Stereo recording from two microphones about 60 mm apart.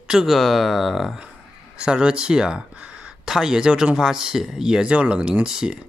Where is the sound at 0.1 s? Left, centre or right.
Centre.